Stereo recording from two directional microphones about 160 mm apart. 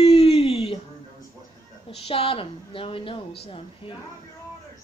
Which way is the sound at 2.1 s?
35° left (ahead or behind).